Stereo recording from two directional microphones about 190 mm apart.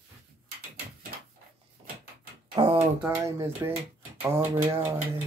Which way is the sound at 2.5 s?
30° right (ahead or behind).